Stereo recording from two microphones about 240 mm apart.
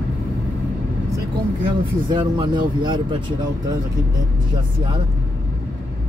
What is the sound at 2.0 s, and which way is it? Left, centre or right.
Speech, centre.